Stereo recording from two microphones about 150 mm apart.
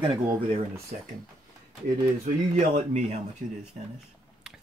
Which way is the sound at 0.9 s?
55° right (ahead or behind).